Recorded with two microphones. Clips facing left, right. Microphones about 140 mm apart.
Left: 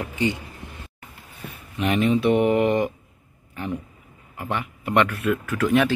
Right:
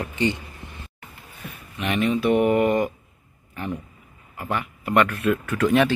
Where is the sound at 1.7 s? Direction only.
35° left (ahead or behind).